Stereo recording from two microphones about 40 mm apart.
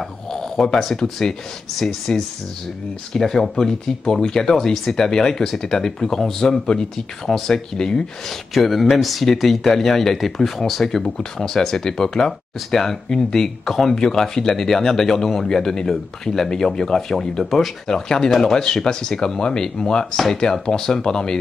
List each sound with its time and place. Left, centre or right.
0.3 s a sound: centre
1.8 s speech: centre
8.3 s speech: centre